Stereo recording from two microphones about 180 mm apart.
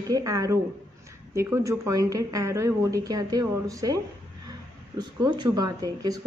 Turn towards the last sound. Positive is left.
turn(degrees=-20)  # may be behind; listen again after turning